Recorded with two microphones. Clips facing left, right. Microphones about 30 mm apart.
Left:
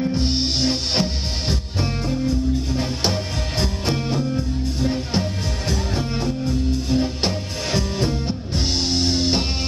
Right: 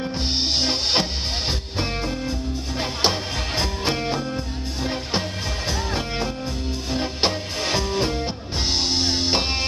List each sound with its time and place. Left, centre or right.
0.1 s music: centre
5.9 s music: right